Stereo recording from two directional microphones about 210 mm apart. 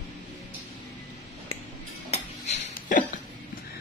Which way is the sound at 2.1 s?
35° left (ahead or behind).